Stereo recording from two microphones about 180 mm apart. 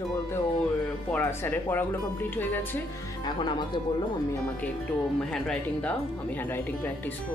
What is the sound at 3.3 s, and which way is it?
Speech, 25° left (ahead or behind).